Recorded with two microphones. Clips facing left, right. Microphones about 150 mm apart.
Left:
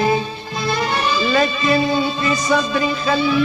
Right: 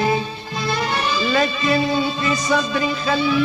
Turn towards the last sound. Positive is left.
turn(degrees=40)  # may be behind; listen again after turning